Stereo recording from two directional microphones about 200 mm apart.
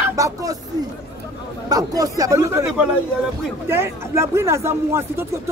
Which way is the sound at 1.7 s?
15° right (ahead or behind).